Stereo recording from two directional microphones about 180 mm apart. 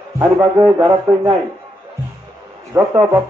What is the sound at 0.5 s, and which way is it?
Speech, 25° right (ahead or behind).